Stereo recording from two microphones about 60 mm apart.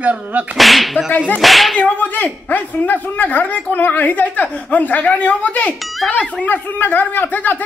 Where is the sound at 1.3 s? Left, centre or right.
Centre.